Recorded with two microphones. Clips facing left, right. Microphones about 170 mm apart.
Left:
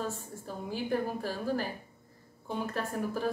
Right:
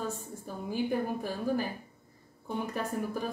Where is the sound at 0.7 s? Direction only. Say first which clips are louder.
Right 1 dB; 15° right (ahead or behind).